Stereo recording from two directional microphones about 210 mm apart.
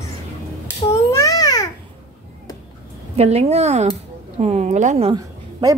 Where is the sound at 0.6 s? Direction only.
15° left (ahead or behind).